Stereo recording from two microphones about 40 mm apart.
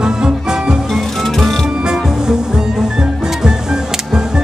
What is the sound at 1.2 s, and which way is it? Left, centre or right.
Music, centre.